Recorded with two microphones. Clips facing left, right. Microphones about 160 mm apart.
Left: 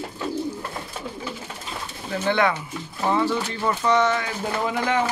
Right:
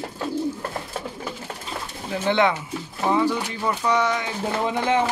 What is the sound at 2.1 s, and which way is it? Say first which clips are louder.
Speech: right 1 dB; 20° right (ahead or behind).